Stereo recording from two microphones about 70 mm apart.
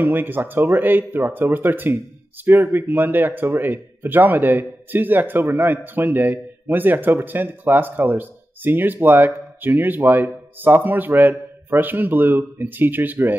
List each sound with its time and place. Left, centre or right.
0.0 s speech: right